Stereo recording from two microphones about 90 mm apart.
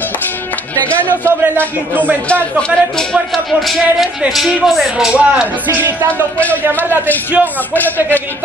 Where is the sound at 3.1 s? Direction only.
Centre (ahead or behind); by 6.3 s 25° right (ahead or behind).